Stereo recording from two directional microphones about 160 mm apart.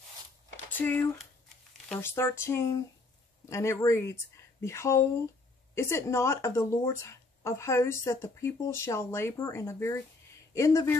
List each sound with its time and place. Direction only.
0.7 s speech: 10° left (ahead or behind)